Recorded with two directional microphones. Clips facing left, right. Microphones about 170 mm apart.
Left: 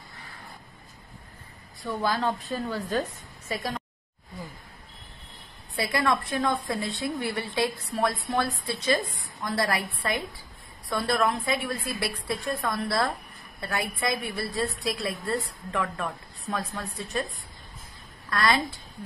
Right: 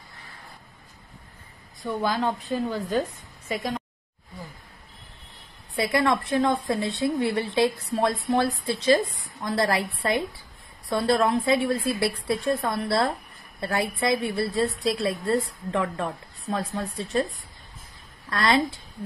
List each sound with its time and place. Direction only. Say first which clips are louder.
1.9 s a woman's voice: right 2 dB; 20° right (ahead or behind)
5.8 s a woman's voice: right 3 dB; 25° right (ahead or behind)
18.3 s a woman's voice: right 3 dB; 25° right (ahead or behind)